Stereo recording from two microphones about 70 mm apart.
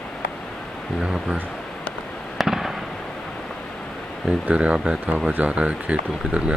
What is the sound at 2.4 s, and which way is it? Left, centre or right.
Fireworks, centre.